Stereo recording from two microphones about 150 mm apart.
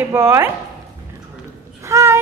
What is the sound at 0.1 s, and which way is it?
Speech, 15° right (ahead or behind).